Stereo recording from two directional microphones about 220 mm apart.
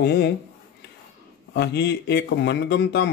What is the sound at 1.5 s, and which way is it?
Speech, 50° left (ahead or behind).